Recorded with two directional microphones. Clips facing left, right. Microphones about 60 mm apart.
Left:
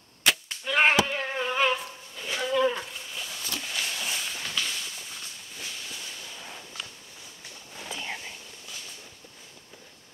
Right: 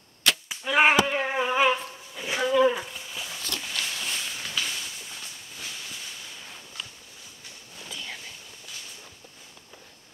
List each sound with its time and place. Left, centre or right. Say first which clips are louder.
0.5 s a sound: right 3 dB; centre
2.5 s livestock: right 3 dB; centre
3.4 s walk: even; centre
7.7 s whispering: left 3 dB; left